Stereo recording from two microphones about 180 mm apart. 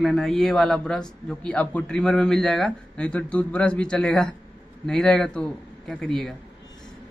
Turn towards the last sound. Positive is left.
turn(degrees=0)  # may be behind; listen again after turning